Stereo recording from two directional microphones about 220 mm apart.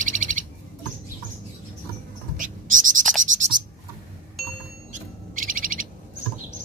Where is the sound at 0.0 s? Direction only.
35° right (ahead or behind).